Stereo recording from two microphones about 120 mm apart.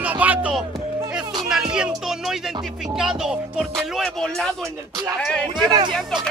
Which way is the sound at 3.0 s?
5° right (ahead or behind).